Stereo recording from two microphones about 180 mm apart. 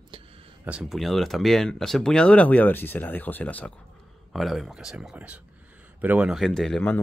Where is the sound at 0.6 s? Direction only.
5° right (ahead or behind).